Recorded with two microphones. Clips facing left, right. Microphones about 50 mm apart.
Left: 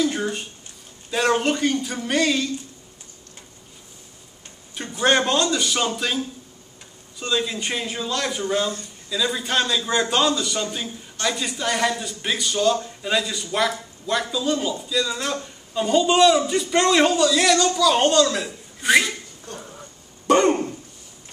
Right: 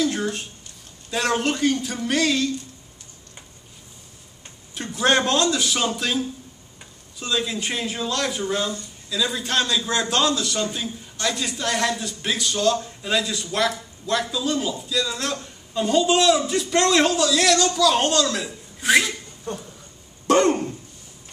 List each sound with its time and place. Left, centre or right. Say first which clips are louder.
0.0 s a sound: even; centre
1.1 s a man's voice: left 2 dB; centre
4.7 s a man's voice: left 1 dB; centre
19.5 s speech: right 6 dB; right
20.2 s throat clearing: left 1 dB; centre